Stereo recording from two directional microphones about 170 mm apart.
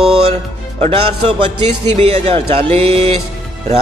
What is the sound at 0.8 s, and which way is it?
A man's voice, 40° right (ahead or behind).